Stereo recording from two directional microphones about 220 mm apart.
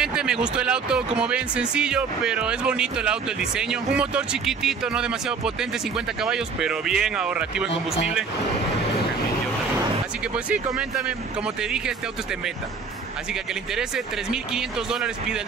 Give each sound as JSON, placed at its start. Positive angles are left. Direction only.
{"t": 0.0, "sound": "speech", "side_deg": -5}
{"t": 7.7, "sound": "speech", "side_deg": 25}
{"t": 10.3, "sound": "speech", "side_deg": -5}
{"t": 13.3, "sound": "speech", "side_deg": 0}